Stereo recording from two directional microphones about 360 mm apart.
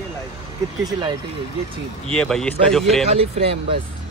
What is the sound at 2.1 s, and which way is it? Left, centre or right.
Speech, centre.